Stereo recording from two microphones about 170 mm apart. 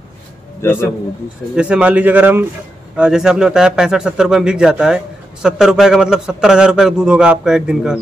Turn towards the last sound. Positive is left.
turn(degrees=-5)  # may be behind; listen again after turning